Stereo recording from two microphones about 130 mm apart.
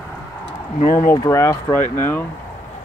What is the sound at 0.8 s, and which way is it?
Speech, 90° left.